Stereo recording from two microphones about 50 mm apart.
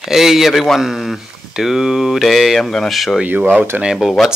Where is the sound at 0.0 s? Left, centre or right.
Centre.